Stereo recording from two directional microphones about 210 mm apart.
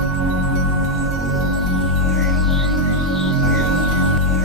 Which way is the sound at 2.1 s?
Centre (ahead or behind).